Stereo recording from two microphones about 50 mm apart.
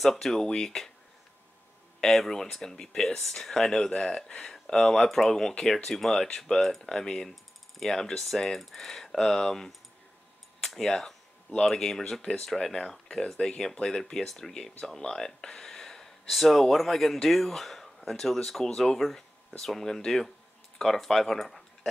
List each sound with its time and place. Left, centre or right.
0.0 s speech: centre
2.0 s speech: centre
12.2 s speech: left
12.4 s speech: centre